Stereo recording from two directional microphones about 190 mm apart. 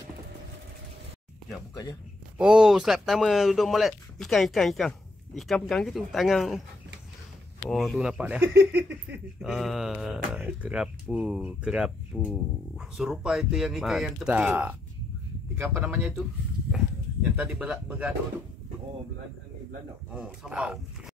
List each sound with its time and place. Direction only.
1.7 s speech: 20° left (ahead or behind)
2.3 s speech: 5° right (ahead or behind)
7.7 s speech: centre (ahead or behind)
8.5 s a sound: 60° right (ahead or behind)
9.1 s speech: centre (ahead or behind)
20.4 s speech: 5° right (ahead or behind)